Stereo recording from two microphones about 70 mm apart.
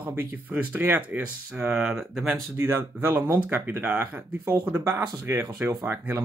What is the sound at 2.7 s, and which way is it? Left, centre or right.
Speech, right.